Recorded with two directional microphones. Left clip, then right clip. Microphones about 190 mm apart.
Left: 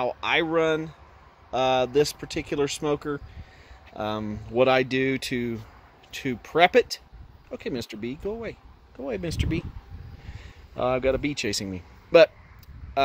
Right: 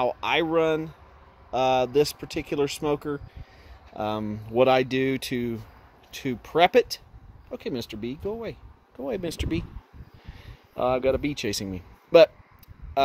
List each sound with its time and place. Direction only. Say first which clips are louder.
0.0 s speech: even; 20° right (ahead or behind)